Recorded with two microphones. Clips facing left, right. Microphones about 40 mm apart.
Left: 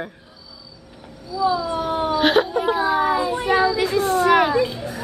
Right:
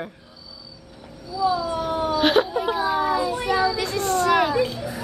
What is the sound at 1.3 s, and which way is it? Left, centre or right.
Speech, centre.